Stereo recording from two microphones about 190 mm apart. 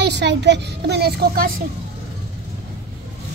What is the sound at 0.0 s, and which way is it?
Speech, 65° right (ahead or behind).